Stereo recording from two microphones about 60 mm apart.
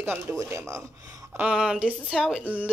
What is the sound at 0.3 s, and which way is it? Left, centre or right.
Speech, right.